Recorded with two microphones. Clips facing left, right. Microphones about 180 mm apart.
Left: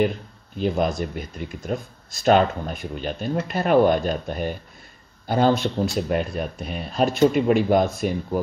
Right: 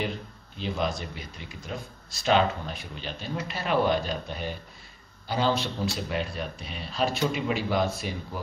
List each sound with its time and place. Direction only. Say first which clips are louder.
0.6 s speech: left 7 dB; 50° left (ahead or behind)